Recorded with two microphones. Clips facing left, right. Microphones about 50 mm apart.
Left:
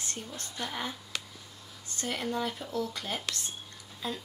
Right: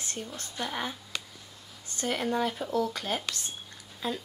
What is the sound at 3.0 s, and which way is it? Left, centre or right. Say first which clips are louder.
Speech: right 3 dB; centre.